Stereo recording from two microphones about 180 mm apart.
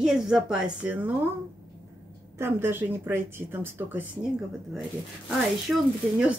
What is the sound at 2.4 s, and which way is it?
Speech, 10° right (ahead or behind).